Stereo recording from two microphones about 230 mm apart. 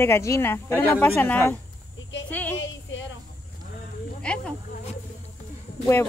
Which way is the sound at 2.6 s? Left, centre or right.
Left.